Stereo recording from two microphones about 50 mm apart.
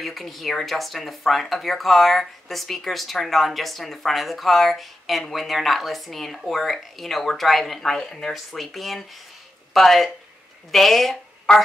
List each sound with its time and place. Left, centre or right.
0.0 s speech: centre
11.5 s speech: centre